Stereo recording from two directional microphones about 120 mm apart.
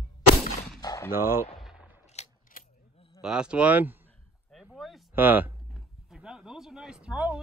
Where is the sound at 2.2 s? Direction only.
70° left (ahead or behind).